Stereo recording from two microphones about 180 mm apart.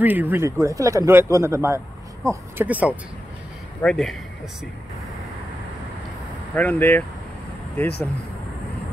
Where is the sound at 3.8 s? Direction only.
Centre (ahead or behind).